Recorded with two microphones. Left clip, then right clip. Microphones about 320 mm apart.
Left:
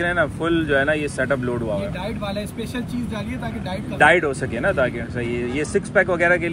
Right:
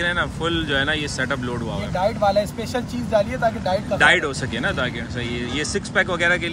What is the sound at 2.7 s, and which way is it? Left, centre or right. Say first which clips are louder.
Speech: right 8 dB; centre.